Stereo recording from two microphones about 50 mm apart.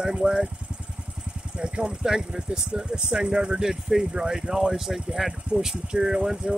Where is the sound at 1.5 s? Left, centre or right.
Right.